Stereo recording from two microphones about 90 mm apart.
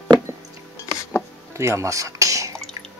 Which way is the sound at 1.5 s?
35° right (ahead or behind).